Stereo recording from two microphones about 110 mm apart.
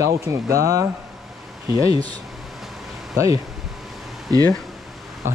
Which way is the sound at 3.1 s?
30° right (ahead or behind).